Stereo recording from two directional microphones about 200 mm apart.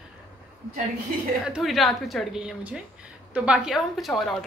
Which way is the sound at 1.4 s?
Centre (ahead or behind).